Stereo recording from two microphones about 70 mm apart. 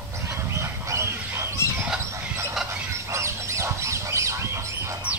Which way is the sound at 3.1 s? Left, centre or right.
Right.